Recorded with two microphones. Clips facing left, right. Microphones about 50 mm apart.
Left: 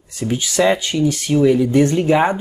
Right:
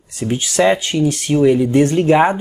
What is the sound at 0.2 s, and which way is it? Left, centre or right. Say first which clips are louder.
Speech: right 1 dB; right.